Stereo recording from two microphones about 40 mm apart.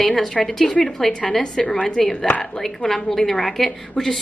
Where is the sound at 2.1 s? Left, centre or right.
Centre.